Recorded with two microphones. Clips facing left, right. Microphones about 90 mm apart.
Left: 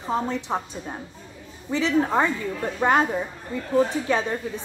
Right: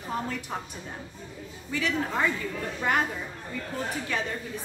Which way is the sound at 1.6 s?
25° left (ahead or behind).